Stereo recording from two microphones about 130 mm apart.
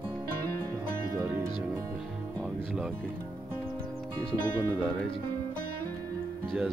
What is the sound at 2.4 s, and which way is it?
Music, 5° right (ahead or behind).